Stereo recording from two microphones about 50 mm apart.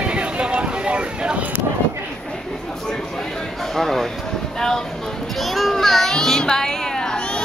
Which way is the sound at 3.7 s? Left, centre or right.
Centre.